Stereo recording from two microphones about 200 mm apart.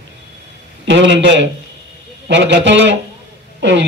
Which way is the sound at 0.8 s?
65° right (ahead or behind).